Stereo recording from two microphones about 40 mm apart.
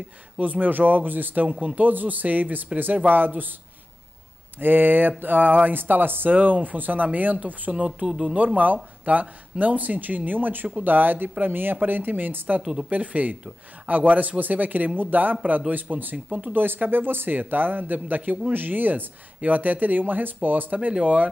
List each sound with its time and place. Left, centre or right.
0.4 s speech: right
1.5 s speech: right
1.8 s speech: right
4.6 s speech: right
6.3 s speech: right
8.1 s speech: right
9.0 s speech: right
12.9 s speech: right
21.0 s speech: right